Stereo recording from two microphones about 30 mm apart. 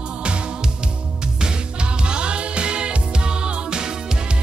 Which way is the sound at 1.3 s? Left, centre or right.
Right.